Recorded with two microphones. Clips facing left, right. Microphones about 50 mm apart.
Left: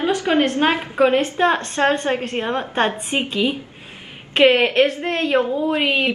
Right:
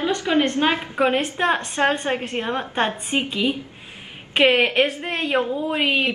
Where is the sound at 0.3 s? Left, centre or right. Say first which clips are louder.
Left 2 dB; centre.